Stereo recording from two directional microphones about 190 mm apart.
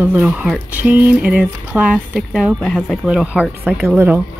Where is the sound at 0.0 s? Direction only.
10° right (ahead or behind).